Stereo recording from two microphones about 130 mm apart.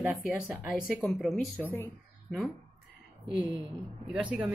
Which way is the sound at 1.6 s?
15° left (ahead or behind).